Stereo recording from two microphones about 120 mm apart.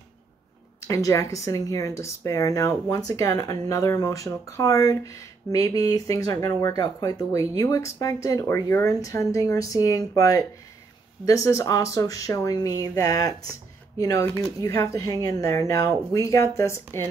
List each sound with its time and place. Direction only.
0.8 s speech: 25° left (ahead or behind)